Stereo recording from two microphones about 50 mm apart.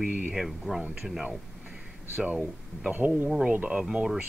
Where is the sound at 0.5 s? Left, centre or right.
Centre.